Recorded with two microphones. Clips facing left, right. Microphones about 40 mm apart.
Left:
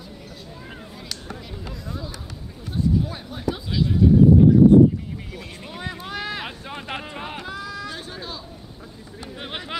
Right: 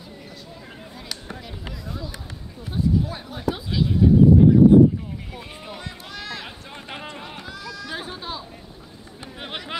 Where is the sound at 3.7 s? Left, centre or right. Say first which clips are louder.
Left 1 dB; centre.